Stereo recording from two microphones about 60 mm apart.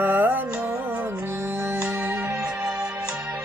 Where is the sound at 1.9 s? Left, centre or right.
Right.